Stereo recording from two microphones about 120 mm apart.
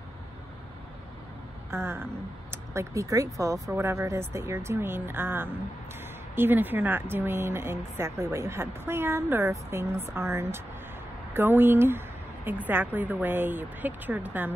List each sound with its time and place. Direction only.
1.7 s a woman's voice: 20° right (ahead or behind)